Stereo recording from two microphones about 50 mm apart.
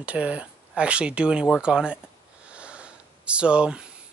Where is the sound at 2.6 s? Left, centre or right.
Right.